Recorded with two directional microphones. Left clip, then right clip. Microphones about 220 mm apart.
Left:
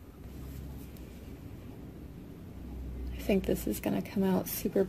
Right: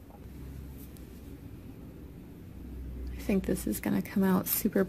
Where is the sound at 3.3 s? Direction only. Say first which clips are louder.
Left 1 dB; 30° right (ahead or behind).